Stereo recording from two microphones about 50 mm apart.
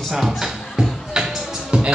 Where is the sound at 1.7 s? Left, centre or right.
Right.